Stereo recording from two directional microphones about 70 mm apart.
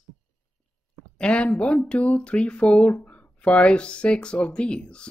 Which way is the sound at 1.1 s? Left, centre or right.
Centre.